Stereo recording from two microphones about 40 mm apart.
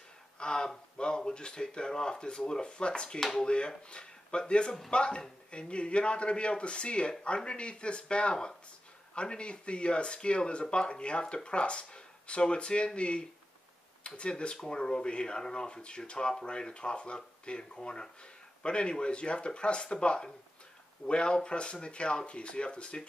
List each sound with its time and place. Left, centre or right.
0.4 s speech: centre
3.2 s speech: centre
3.4 s speech: left